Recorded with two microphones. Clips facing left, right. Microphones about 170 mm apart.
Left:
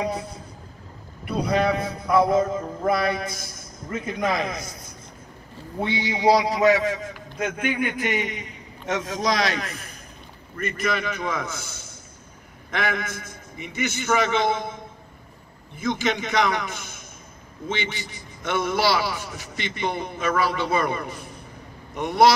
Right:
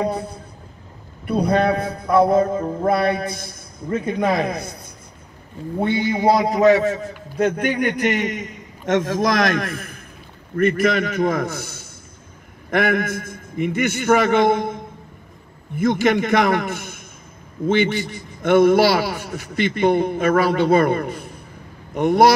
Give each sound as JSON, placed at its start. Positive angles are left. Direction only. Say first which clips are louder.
{"t": 0.0, "sound": "a man's voice", "louder": "right 4 dB", "side_deg": -60}
{"t": 2.5, "sound": "music", "louder": "right 5 dB", "side_deg": -30}
{"t": 2.9, "sound": "a man's voice", "louder": "right 3 dB", "side_deg": -55}